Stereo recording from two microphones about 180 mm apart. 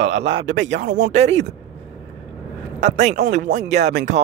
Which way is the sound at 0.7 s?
45° right (ahead or behind).